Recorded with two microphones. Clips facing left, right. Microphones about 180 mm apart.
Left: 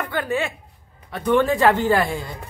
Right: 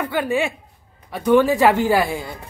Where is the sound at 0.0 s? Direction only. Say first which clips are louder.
Right 3 dB; 10° right (ahead or behind).